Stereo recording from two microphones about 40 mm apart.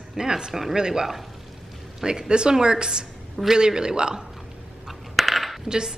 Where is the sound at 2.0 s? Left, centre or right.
Centre.